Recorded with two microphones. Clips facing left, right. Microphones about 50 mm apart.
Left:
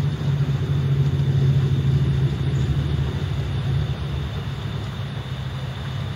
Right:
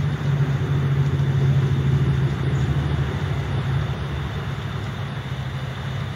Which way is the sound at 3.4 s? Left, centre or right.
Centre.